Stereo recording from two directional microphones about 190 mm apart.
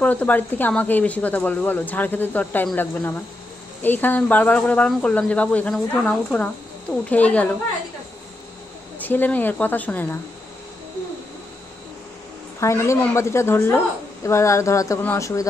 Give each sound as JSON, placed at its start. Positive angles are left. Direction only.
{"t": 0.0, "sound": "speech", "side_deg": 10}
{"t": 9.0, "sound": "speech", "side_deg": 10}
{"t": 12.5, "sound": "speech", "side_deg": 15}